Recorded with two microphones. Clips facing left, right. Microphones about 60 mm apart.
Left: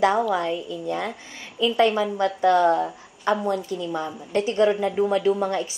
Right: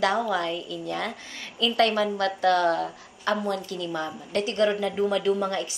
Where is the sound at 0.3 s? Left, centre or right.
Centre.